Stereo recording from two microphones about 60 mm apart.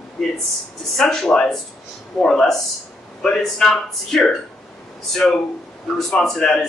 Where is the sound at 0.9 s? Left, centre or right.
Centre.